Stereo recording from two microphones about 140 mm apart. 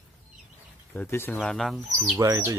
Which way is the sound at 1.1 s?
15° left (ahead or behind).